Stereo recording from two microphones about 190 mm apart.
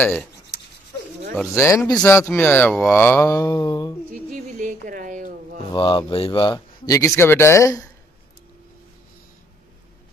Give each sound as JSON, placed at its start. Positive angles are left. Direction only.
{"t": 0.0, "sound": "mantra", "side_deg": 10}
{"t": 1.3, "sound": "mantra", "side_deg": 10}
{"t": 4.1, "sound": "a sound", "side_deg": -45}
{"t": 5.7, "sound": "speech", "side_deg": 25}